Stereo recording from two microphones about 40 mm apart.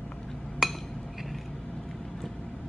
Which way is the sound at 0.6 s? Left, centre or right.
Centre.